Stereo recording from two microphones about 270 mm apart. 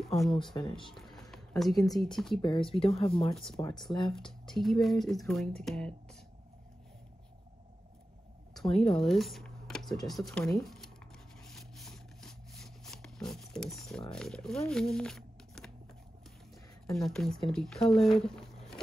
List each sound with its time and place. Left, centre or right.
0.0 s speech: centre
0.6 s speech: centre
0.9 s a sound: centre
2.1 s speech: centre
2.7 s speech: left
4.5 s speech: centre
8.5 s speech: centre
11.4 s a sound: centre
14.1 s speech: centre
14.7 s a sound: centre
16.8 s speech: centre